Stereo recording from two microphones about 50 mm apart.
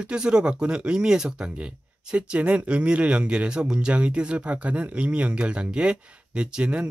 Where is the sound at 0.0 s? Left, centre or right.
Centre.